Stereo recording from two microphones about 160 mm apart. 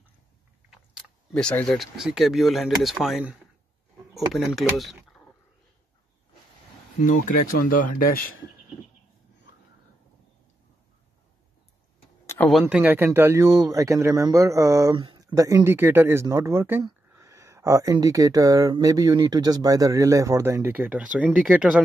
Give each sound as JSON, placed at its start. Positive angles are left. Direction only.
{"t": 0.7, "sound": "speech", "side_deg": 0}
{"t": 4.7, "sound": "a sound", "side_deg": 0}
{"t": 7.0, "sound": "speech", "side_deg": 55}
{"t": 12.6, "sound": "speech", "side_deg": -10}